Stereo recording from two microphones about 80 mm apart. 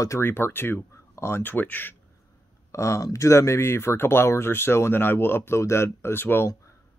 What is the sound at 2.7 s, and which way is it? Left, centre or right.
Speech, left.